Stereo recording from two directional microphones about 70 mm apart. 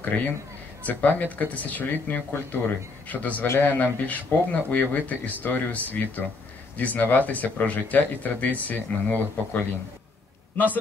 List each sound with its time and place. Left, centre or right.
0.1 s speech: centre